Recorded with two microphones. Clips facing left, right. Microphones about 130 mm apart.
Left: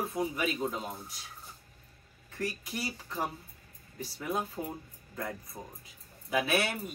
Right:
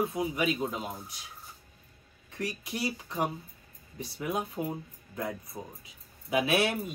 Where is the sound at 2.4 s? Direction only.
25° right (ahead or behind).